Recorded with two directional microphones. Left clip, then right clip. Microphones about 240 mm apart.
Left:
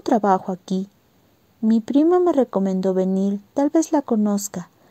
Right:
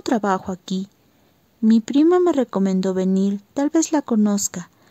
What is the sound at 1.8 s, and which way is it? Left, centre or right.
Speech, right.